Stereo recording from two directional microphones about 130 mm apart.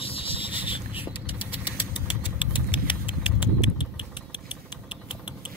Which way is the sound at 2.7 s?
40° left (ahead or behind).